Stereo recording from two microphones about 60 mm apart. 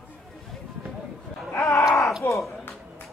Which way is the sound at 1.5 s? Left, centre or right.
Left.